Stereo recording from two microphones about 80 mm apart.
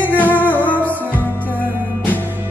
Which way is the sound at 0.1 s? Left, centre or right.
Left.